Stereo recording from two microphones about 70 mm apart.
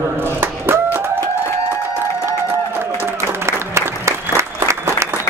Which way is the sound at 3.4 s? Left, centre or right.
Right.